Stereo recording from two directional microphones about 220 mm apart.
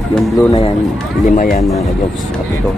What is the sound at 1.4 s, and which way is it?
Speech, 35° left (ahead or behind).